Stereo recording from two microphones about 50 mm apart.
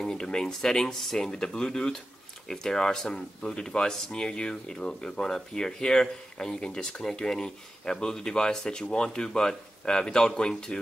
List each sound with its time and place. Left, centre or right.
0.0 s speech: centre